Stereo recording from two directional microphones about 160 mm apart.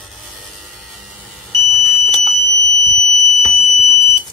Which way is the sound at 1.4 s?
Centre (ahead or behind).